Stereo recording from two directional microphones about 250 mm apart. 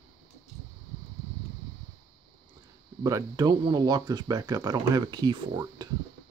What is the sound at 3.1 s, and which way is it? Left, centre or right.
Speech, centre.